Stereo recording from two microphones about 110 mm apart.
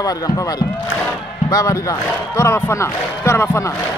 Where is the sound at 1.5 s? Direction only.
30° left (ahead or behind).